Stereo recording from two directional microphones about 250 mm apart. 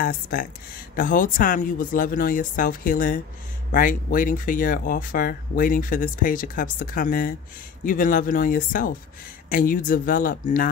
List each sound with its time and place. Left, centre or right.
0.0 s speech: left